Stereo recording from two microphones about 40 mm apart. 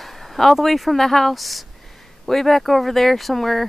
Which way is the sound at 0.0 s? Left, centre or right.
Centre.